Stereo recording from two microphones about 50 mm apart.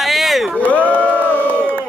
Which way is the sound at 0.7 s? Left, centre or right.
Left.